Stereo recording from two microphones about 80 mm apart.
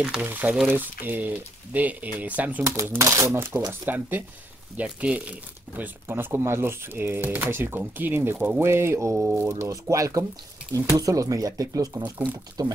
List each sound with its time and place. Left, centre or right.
0.0 s speech: centre
0.3 s speech: centre
2.6 s speech: right
3.8 s speech: right
5.8 s speech: right
9.1 s speech: centre
9.5 s speech: right
12.0 s speech: right